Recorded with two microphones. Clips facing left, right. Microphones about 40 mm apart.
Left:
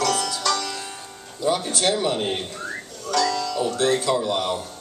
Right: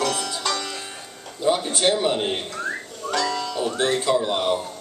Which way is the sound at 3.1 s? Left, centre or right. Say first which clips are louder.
Left 2 dB; right.